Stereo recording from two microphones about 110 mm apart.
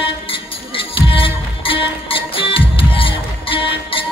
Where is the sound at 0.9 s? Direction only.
55° left (ahead or behind).